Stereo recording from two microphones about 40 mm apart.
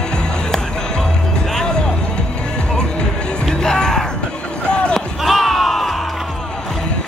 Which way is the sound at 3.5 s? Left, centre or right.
Centre.